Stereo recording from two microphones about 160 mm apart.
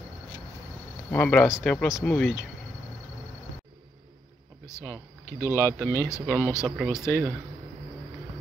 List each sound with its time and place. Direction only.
1.1 s speech: 10° left (ahead or behind)
4.6 s speech: 15° left (ahead or behind)